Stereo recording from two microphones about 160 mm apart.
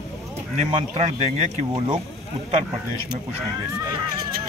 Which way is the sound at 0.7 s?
40° right (ahead or behind).